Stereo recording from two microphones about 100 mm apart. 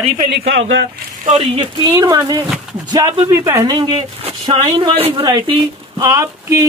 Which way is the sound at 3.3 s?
30° right (ahead or behind).